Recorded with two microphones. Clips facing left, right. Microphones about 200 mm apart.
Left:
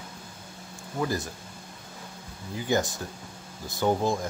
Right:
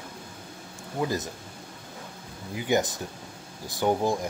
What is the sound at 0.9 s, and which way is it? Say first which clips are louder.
Speech: right 1 dB; 15° right (ahead or behind).